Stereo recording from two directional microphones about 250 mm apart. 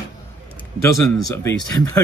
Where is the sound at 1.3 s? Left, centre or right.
Centre.